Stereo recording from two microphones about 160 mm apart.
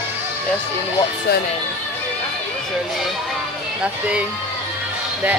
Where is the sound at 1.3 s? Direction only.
90° left.